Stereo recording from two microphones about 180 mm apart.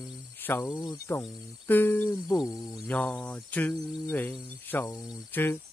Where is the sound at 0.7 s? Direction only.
20° left (ahead or behind).